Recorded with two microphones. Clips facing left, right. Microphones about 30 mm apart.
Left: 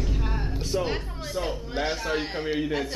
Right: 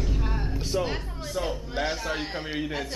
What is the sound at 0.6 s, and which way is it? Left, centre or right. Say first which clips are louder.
A woman's voice: left 1 dB; centre.